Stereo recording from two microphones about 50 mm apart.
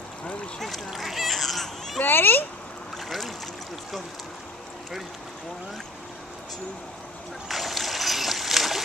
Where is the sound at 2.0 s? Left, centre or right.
Left.